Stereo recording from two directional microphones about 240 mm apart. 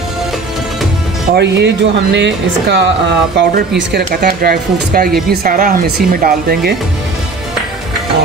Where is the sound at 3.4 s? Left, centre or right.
Right.